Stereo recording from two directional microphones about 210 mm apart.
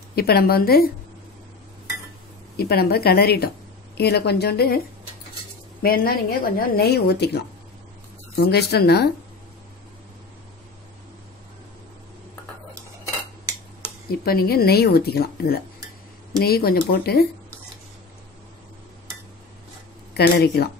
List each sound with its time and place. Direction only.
0.1 s a woman's voice: 50° left (ahead or behind)
2.5 s a woman's voice: 45° left (ahead or behind)
5.8 s a woman's voice: 45° left (ahead or behind)
8.5 s a woman's voice: 50° left (ahead or behind)
14.0 s a woman's voice: 45° left (ahead or behind)
20.2 s a woman's voice: 50° left (ahead or behind)